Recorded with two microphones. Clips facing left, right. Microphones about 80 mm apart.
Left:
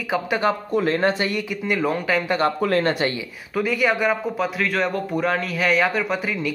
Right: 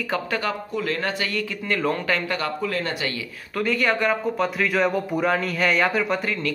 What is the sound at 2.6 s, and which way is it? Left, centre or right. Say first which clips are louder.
Speech: left 6 dB; left.